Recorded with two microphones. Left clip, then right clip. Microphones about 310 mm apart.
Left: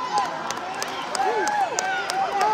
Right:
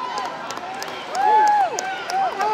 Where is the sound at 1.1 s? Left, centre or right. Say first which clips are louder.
Right 8 dB; left.